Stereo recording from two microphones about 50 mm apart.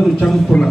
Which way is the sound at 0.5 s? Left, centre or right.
Centre.